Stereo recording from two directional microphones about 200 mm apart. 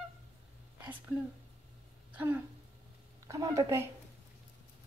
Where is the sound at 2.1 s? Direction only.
10° right (ahead or behind).